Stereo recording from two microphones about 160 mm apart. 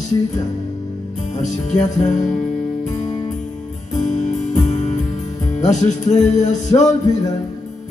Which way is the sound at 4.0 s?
50° left (ahead or behind).